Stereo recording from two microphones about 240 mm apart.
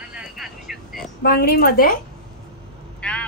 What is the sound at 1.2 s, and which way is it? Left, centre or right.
Speech, left.